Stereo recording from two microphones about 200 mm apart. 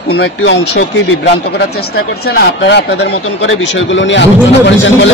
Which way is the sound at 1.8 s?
50° left (ahead or behind).